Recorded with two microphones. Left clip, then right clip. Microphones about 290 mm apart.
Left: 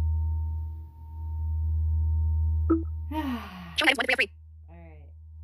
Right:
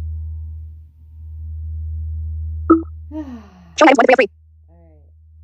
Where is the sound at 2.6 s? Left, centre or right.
Centre.